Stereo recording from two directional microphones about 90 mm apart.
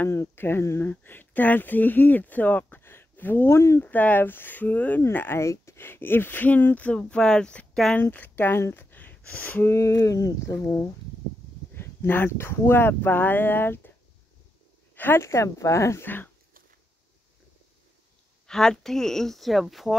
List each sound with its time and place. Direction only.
0.0 s speech: 30° left (ahead or behind); by 7.9 s 10° left (ahead or behind)
7.9 s speech: 20° left (ahead or behind)
9.8 s speech: 35° left (ahead or behind)
11.7 s speech: 25° left (ahead or behind)
15.0 s speech: 25° left (ahead or behind)
18.5 s speech: 5° left (ahead or behind)